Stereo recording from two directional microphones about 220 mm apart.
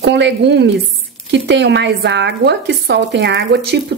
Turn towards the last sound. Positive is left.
turn(degrees=-50)  # may be behind; listen again after turning